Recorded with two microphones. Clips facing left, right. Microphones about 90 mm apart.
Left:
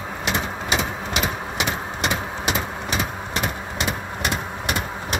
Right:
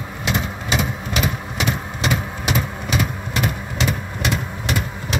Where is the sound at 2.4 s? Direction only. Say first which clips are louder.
Right 1 dB; 25° left (ahead or behind).